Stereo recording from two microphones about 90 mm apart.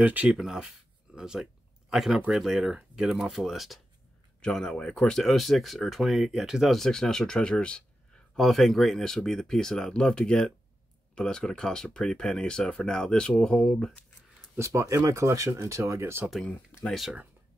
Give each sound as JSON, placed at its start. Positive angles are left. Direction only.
{"t": 0.0, "sound": "speech", "side_deg": -15}
{"t": 0.3, "sound": "speech", "side_deg": -5}
{"t": 14.6, "sound": "speech", "side_deg": -35}
{"t": 16.4, "sound": "speech", "side_deg": 15}